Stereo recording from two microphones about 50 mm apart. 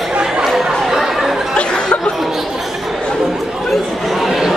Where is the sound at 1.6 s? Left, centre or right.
Centre.